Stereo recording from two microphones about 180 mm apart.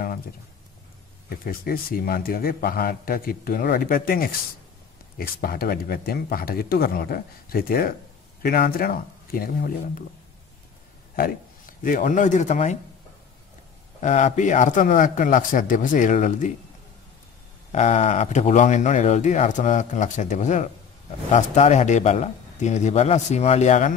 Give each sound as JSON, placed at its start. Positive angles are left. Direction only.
{"t": 1.4, "sound": "a man's voice", "side_deg": 55}
{"t": 11.1, "sound": "speech", "side_deg": 50}
{"t": 14.0, "sound": "a man's voice", "side_deg": 40}
{"t": 17.7, "sound": "speech", "side_deg": 40}